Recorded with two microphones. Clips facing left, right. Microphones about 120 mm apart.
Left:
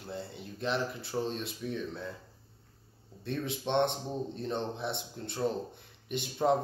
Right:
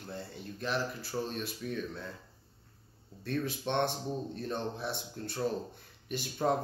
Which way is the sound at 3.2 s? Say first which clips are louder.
Even; 20° left (ahead or behind).